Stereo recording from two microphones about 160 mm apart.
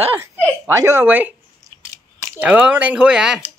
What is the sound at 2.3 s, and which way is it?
Speech, 10° right (ahead or behind).